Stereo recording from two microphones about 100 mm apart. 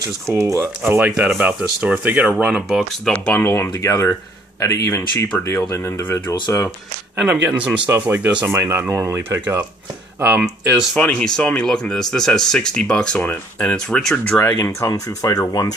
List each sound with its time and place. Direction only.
0.3 s speech: 25° right (ahead or behind)
0.9 s speech: 15° right (ahead or behind)
3.1 s speech: 15° left (ahead or behind)
7.2 s speech: 15° right (ahead or behind)
10.4 s speech: 5° right (ahead or behind)
11.0 s speech: 10° left (ahead or behind)
14.6 s speech: 30° left (ahead or behind)